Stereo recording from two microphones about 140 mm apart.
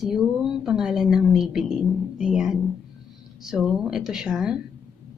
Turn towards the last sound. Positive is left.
turn(degrees=-5)  # may be behind; listen again after turning